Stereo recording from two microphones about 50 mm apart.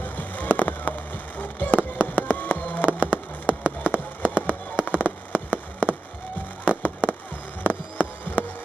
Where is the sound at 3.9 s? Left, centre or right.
Right.